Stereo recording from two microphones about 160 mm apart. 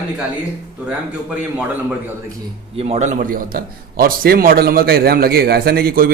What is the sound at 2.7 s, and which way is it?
A man's voice, 40° right (ahead or behind).